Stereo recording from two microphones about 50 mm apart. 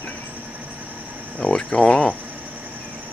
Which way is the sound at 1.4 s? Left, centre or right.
Centre.